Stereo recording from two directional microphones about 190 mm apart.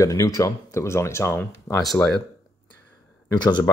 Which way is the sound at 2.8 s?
20° left (ahead or behind).